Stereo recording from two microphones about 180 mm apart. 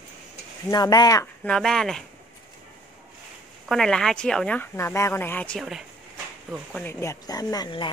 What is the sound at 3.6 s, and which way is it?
Speech, centre (ahead or behind).